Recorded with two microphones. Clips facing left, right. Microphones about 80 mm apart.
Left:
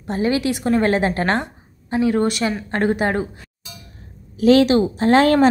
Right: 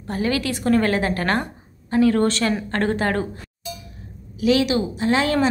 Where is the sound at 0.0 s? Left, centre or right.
Left.